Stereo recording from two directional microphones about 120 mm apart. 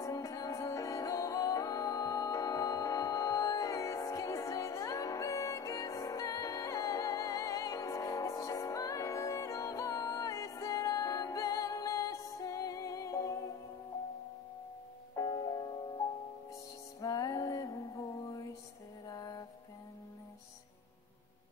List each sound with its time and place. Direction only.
0.0 s music: 25° left (ahead or behind)
15.1 s music: 35° left (ahead or behind)
17.0 s music: 30° left (ahead or behind)